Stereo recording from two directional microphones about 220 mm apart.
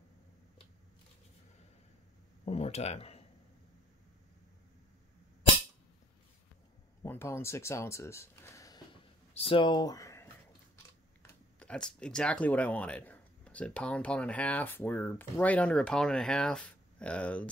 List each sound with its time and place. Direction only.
2.4 s speech: 30° left (ahead or behind)
7.0 s speech: 10° left (ahead or behind)
11.2 s speech: 5° left (ahead or behind)